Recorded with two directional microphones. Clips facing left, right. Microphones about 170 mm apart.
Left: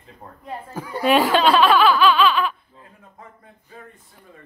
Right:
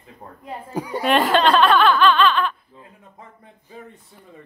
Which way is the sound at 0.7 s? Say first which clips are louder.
Right 8 dB; 15° right (ahead or behind).